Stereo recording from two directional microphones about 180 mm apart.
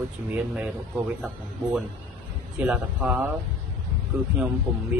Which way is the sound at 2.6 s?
5° right (ahead or behind).